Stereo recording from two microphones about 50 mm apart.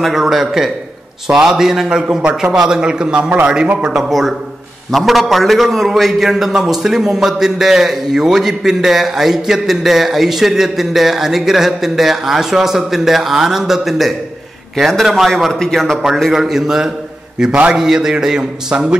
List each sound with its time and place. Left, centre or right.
0.0 s a man's voice: centre; by 3.9 s right
3.9 s a man's voice: centre
16.3 s a man's voice: centre